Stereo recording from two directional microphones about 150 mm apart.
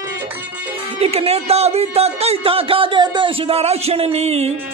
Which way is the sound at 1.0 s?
40° right (ahead or behind).